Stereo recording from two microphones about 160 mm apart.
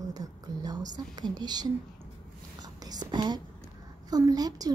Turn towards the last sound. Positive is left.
turn(degrees=-25)  # may be behind; listen again after turning